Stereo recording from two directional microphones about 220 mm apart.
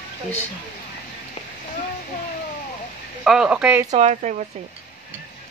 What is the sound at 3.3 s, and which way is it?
Speech, 5° right (ahead or behind).